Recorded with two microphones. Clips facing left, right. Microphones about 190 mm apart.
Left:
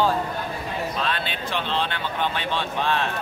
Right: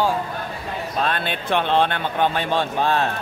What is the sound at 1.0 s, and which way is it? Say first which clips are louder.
Speech: right 4 dB; 50° right (ahead or behind).